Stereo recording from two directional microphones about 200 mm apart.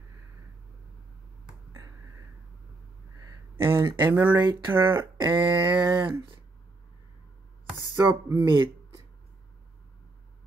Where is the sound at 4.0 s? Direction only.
10° right (ahead or behind).